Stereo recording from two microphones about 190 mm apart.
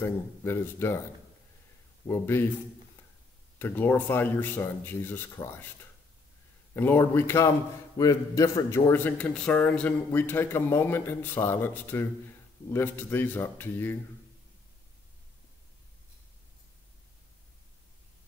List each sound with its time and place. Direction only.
0.0 s a man's voice: 10° left (ahead or behind)
2.0 s a man's voice: 10° left (ahead or behind)
3.5 s a man's voice: 10° left (ahead or behind)
6.7 s a man's voice: 10° left (ahead or behind)